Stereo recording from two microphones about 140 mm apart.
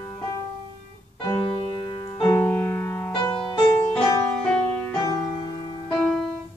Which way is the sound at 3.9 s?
10° left (ahead or behind).